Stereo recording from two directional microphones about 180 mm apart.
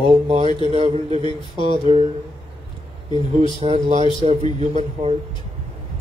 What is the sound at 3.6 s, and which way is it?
Speech, 35° right (ahead or behind).